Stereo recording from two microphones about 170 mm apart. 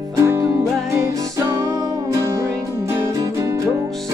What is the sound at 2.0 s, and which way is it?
Music, 20° right (ahead or behind).